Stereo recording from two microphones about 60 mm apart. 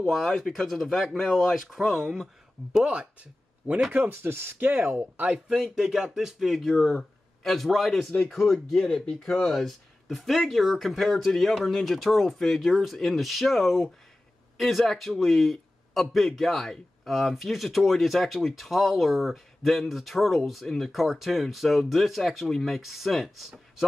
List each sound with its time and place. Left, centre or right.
0.0 s speech: centre; by 3.8 s right
3.9 s speech: right
5.1 s speech: right
5.5 s speech: centre
6.6 s speech: centre